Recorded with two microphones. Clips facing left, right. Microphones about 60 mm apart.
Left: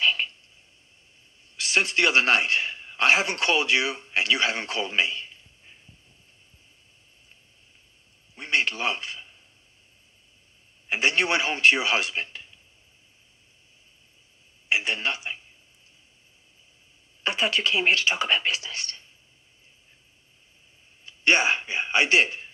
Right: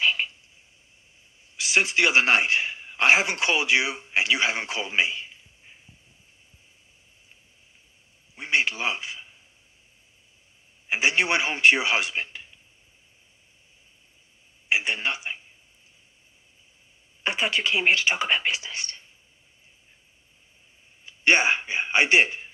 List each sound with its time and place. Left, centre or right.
0.0 s a sound: right
1.6 s a man's voice: centre
8.4 s a sound: centre
10.9 s a man's voice: centre
14.7 s a man's voice: right
17.4 s a man's voice: right
21.4 s a man's voice: right